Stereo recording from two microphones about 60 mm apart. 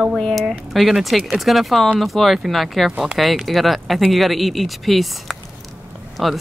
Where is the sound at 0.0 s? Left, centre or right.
Centre.